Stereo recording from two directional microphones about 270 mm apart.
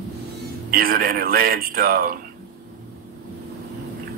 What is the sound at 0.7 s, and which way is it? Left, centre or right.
Speech, right.